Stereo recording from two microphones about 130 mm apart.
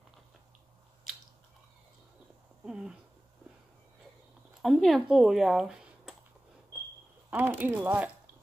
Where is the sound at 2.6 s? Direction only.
5° right (ahead or behind).